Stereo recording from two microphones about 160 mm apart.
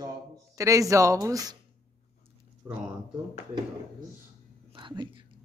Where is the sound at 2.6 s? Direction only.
20° right (ahead or behind).